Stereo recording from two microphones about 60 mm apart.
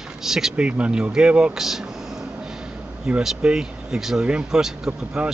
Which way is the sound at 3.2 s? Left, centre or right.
Centre.